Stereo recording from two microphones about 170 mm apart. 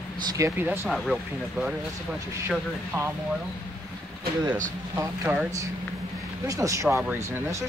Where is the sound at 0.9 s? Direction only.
Centre (ahead or behind).